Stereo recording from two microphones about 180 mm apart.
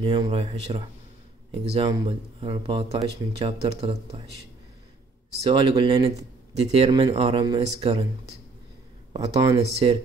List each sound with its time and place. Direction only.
0.0 s speech: 25° right (ahead or behind)
5.4 s speech: 30° right (ahead or behind)
6.0 s a man's voice: 35° right (ahead or behind)
9.1 s speech: 25° right (ahead or behind)